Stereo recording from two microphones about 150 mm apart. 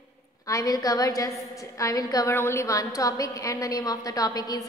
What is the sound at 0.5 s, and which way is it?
A woman's voice, 20° left (ahead or behind).